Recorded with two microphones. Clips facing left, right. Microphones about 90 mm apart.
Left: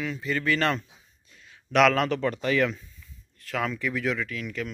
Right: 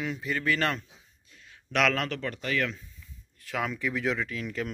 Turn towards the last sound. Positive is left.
turn(degrees=-30)  # may be behind; listen again after turning